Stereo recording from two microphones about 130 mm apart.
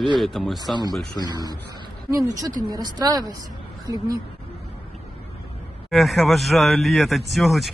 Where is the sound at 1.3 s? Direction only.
30° right (ahead or behind).